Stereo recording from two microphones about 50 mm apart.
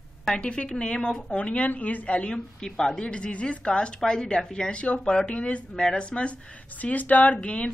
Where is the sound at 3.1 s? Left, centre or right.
Left.